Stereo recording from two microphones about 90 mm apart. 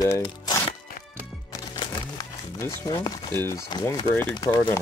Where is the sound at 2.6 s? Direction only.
40° left (ahead or behind).